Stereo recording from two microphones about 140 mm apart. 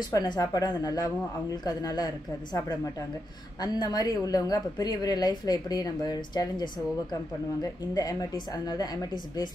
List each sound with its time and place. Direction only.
0.1 s a woman's voice: 30° left (ahead or behind)